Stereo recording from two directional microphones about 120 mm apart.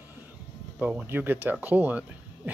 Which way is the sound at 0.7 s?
10° right (ahead or behind).